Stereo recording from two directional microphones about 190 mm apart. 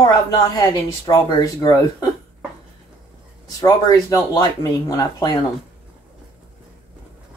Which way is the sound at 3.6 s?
20° left (ahead or behind).